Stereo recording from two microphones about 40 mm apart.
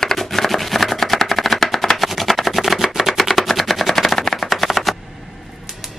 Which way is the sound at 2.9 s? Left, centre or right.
Centre.